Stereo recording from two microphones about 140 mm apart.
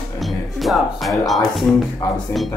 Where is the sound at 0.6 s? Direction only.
Centre (ahead or behind).